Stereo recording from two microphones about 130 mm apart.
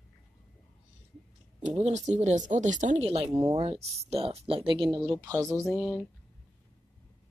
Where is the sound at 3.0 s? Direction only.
45° right (ahead or behind); by 5.4 s 25° right (ahead or behind).